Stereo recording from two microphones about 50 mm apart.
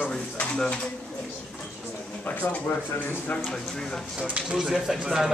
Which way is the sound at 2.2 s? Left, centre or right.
Left.